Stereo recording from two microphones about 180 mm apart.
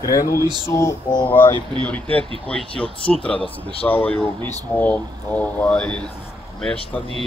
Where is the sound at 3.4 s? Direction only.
30° left (ahead or behind).